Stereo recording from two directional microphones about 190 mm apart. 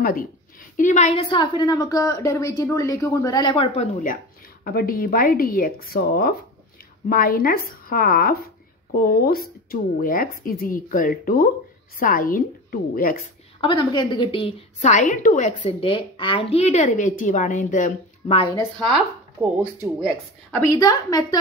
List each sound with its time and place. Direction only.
0.0 s a woman's voice: 50° left (ahead or behind); by 3.6 s 20° left (ahead or behind)
3.7 s a woman's voice: 40° left (ahead or behind)
4.6 s speech: 50° left (ahead or behind)
13.6 s a woman's voice: 25° left (ahead or behind)
20.5 s a woman's voice: 15° left (ahead or behind)